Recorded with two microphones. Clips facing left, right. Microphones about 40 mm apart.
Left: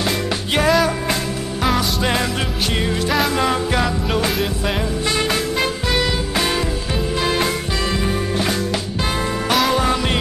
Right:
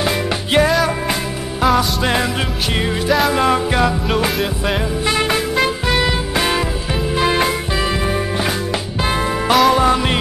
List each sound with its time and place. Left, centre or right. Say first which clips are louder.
0.6 s music: right 1 dB; centre
3.3 s music: right 3 dB; centre
5.3 s music: right 3 dB; centre
9.5 s music: right 5 dB; centre